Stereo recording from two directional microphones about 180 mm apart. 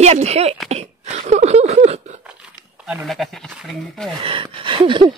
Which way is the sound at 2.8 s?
5° right (ahead or behind).